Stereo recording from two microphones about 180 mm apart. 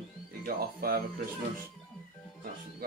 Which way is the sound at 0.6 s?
55° right (ahead or behind).